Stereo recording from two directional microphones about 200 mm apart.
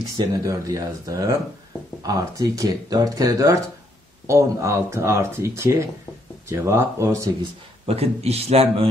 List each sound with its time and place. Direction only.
0.4 s speech: 15° right (ahead or behind)
7.8 s a man's voice: 30° right (ahead or behind)